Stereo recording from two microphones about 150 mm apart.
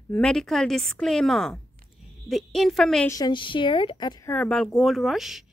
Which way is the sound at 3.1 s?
30° left (ahead or behind).